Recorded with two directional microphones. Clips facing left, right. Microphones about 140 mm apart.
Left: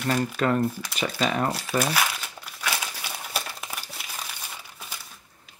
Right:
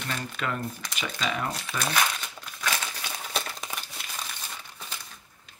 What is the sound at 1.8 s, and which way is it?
Crumpling, 5° left (ahead or behind).